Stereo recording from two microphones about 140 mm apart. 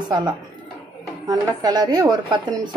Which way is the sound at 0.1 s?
30° right (ahead or behind).